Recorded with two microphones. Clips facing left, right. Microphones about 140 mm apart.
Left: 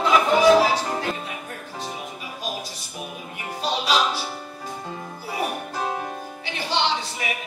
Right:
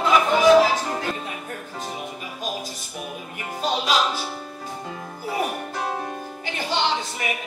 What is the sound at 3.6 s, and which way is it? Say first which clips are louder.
Music: even; 45° right (ahead or behind).